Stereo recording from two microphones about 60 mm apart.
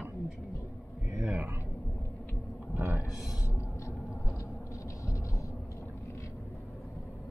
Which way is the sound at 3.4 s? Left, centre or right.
Left.